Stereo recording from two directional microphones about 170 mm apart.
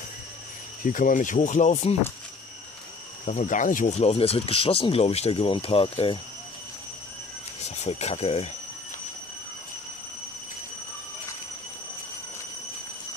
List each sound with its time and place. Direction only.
0.8 s speech: 50° left (ahead or behind)
3.3 s speech: 50° left (ahead or behind); by 6.1 s 30° left (ahead or behind)
7.8 s speech: 40° left (ahead or behind)